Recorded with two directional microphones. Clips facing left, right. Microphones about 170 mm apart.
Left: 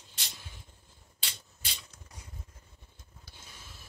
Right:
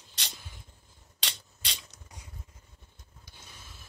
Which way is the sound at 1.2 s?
80° right.